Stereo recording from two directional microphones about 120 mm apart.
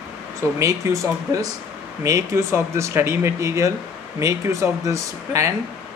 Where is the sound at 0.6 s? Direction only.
25° right (ahead or behind).